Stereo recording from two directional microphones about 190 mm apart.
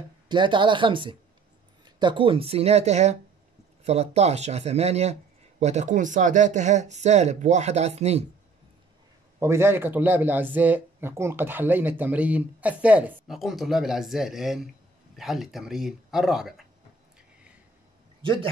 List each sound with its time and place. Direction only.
0.3 s speech: 25° right (ahead or behind)
9.4 s speech: 15° right (ahead or behind)
18.2 s a man's voice: 25° right (ahead or behind)